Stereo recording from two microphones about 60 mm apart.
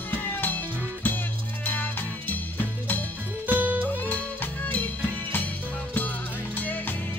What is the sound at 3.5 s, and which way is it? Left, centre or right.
Music, right.